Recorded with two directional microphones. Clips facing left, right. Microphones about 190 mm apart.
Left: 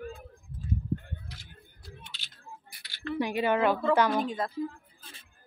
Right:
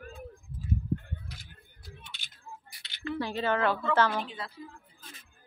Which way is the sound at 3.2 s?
15° left (ahead or behind).